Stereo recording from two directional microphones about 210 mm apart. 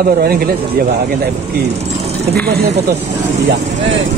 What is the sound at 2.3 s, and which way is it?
Speech, 50° right (ahead or behind).